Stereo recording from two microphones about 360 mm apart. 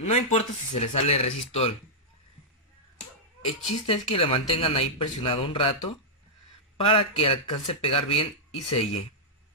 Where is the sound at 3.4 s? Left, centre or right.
Centre.